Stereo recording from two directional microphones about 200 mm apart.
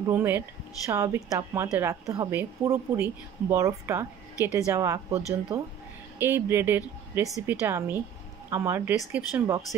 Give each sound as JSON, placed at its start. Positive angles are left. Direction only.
{"t": 0.1, "sound": "a woman's voice", "side_deg": -10}